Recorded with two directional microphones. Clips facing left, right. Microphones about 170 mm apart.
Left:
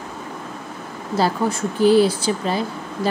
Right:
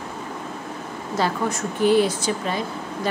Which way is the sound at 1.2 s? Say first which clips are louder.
Left 3 dB; 30° left (ahead or behind).